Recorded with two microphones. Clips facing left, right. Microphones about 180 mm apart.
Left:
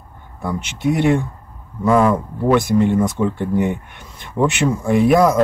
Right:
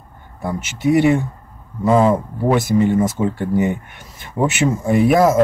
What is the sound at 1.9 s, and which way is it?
Speech, 25° right (ahead or behind).